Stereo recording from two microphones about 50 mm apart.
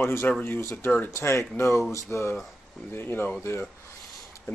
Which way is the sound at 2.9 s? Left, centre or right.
Left.